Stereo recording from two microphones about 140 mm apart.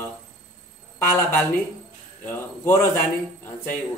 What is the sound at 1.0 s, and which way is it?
A man's voice, 15° left (ahead or behind).